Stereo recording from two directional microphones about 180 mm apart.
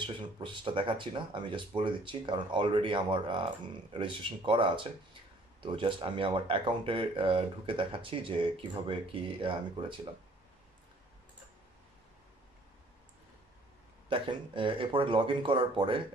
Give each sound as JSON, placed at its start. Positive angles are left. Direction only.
{"t": 0.0, "sound": "speech", "side_deg": -25}
{"t": 14.0, "sound": "speech", "side_deg": -30}